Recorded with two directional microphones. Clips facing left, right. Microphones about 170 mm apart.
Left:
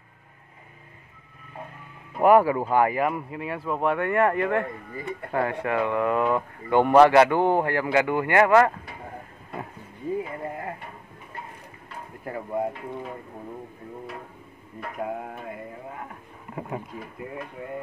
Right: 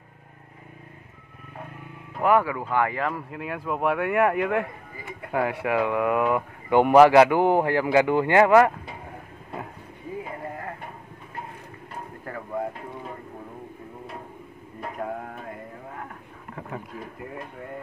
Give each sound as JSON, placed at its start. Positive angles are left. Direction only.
{"t": 2.1, "sound": "a sound", "side_deg": 20}
{"t": 2.6, "sound": "speech", "side_deg": 20}
{"t": 3.3, "sound": "speech", "side_deg": 0}
{"t": 12.3, "sound": "speech", "side_deg": 20}
{"t": 15.0, "sound": "speech", "side_deg": 5}
{"t": 16.9, "sound": "speech", "side_deg": 0}